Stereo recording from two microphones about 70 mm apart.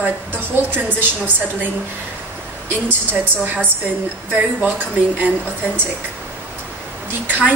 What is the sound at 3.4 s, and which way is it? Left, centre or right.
A woman's voice, right.